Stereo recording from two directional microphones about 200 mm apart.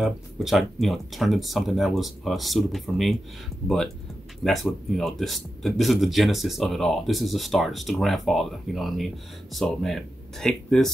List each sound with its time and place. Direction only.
0.0 s speech: centre (ahead or behind)